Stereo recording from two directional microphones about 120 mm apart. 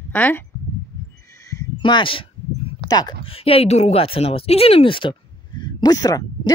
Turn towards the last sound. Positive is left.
turn(degrees=30)  # may be behind; listen again after turning